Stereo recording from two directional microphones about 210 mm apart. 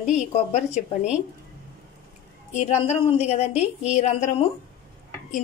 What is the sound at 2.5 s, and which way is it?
A woman's voice, 30° left (ahead or behind).